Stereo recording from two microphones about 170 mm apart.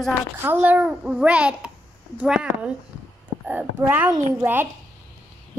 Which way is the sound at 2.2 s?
5° right (ahead or behind).